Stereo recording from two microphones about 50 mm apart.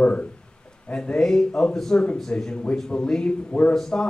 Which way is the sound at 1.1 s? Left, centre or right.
Centre.